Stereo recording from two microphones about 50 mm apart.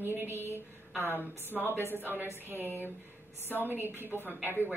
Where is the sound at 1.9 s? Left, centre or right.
Right.